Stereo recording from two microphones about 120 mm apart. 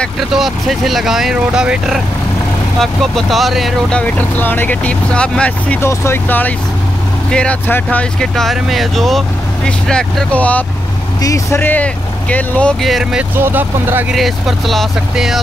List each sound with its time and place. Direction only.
0.3 s speech: centre (ahead or behind)
4.0 s speech: 15° left (ahead or behind)
11.1 s speech: 25° left (ahead or behind); by 13.2 s centre (ahead or behind)
13.4 s speech: 20° right (ahead or behind)
14.1 s speech: centre (ahead or behind)